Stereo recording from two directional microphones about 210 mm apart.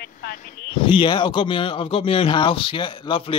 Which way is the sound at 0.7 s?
25° left (ahead or behind).